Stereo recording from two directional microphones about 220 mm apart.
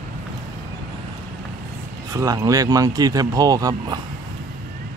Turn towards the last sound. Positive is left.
turn(degrees=-15)  # may be behind; listen again after turning